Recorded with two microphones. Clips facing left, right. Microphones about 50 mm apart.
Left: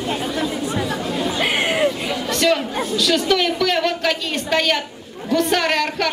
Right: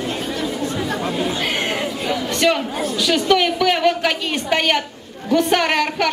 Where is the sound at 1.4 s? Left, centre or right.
Centre.